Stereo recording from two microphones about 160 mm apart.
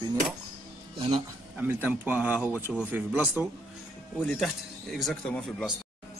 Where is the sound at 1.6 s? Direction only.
10° right (ahead or behind).